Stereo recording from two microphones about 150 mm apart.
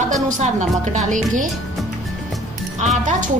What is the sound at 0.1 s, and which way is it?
A woman's voice, 50° right (ahead or behind).